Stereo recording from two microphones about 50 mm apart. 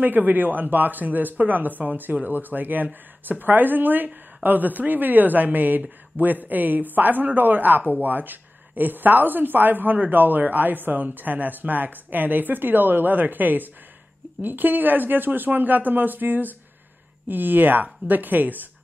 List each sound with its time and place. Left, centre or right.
0.0 s speech: right